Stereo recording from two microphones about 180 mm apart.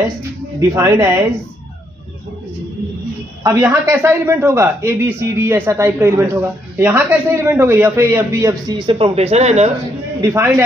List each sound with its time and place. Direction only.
0.6 s speech: 15° right (ahead or behind)
3.4 s speech: 15° right (ahead or behind)
8.8 s speech: 30° right (ahead or behind)
10.2 s speech: 15° right (ahead or behind)